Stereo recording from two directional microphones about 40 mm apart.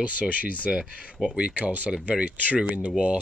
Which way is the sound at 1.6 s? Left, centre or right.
Right.